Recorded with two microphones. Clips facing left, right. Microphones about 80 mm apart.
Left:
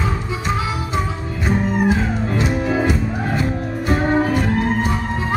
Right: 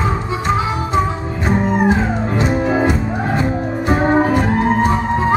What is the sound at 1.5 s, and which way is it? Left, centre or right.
Music, right.